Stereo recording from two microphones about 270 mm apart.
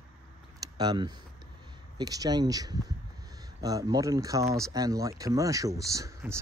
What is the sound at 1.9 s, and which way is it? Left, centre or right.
Speech, centre.